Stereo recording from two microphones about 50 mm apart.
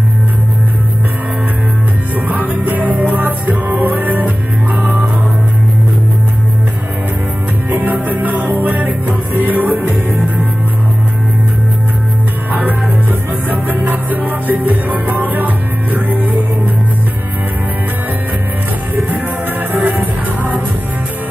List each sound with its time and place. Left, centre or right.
2.2 s music: right
7.7 s music: right
13.5 s music: right
19.7 s music: right